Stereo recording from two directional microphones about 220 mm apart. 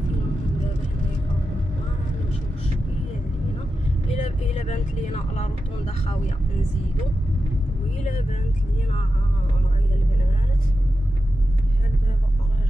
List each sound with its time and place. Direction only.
4.1 s speech: 30° left (ahead or behind)